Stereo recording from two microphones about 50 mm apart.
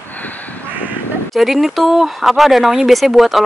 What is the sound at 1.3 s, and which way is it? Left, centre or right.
Speech, centre.